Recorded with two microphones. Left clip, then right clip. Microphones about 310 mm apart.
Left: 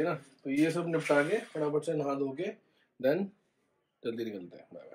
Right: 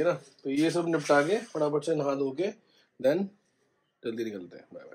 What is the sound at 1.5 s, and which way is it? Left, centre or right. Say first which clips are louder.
Speech: right 7 dB; right.